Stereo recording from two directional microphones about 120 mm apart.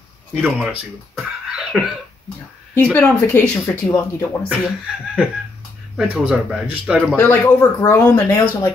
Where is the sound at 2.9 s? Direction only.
15° left (ahead or behind).